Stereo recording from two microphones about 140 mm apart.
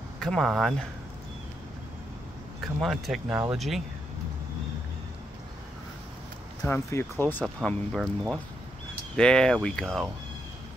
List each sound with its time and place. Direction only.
0.2 s speech: 5° left (ahead or behind)
2.6 s speech: centre (ahead or behind)
3.3 s speech: 20° right (ahead or behind)
3.5 s speech: centre (ahead or behind)
6.7 s speech: 20° left (ahead or behind)
7.4 s speech: centre (ahead or behind)